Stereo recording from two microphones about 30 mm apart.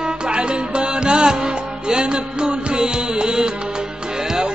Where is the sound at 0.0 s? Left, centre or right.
Right.